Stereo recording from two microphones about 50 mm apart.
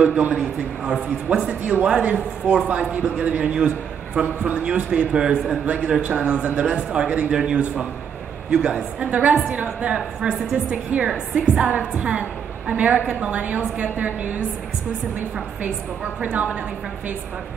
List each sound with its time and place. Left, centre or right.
0.0 s speech: right
1.6 s speech: right
9.1 s a woman's voice: right
15.6 s speech: right